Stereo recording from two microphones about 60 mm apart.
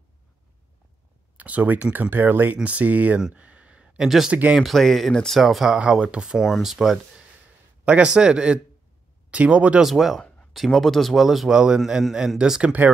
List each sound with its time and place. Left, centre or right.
1.3 s speech: right
3.2 s a man's voice: centre
3.4 s a sound: right
4.3 s speech: right
4.6 s speech: centre
5.4 s speech: centre
5.8 s a man's voice: centre
7.8 s a man's voice: centre
9.8 s a man's voice: centre